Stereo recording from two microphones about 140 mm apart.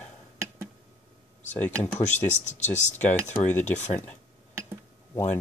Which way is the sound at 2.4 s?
55° left (ahead or behind).